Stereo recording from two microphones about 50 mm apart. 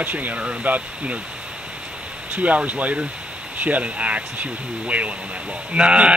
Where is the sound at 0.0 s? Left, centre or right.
Right.